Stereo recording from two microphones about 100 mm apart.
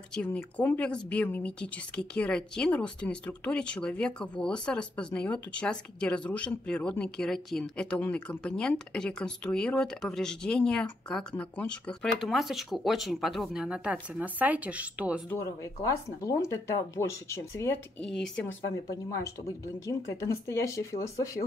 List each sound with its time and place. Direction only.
0.1 s a woman's voice: 10° left (ahead or behind); by 15.2 s 15° right (ahead or behind)
15.4 s speech: 30° left (ahead or behind)
18.0 s a woman's voice: 5° left (ahead or behind)
18.9 s a woman's voice: 35° left (ahead or behind)